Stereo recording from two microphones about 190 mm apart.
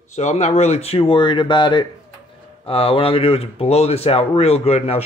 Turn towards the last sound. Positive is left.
turn(degrees=35)  # may be behind; listen again after turning